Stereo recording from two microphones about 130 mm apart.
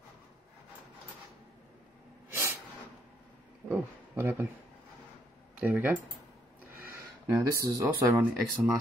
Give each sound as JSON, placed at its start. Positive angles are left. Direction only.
{"t": 2.2, "sound": "snort", "side_deg": -20}
{"t": 3.6, "sound": "a sound", "side_deg": -15}
{"t": 5.6, "sound": "speech", "side_deg": -10}